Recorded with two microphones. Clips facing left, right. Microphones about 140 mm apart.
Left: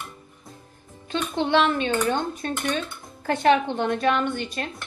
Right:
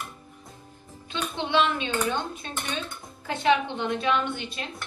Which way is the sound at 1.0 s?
50° left (ahead or behind).